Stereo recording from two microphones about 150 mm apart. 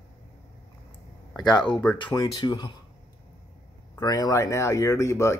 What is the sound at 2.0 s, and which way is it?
Speech, 30° left (ahead or behind).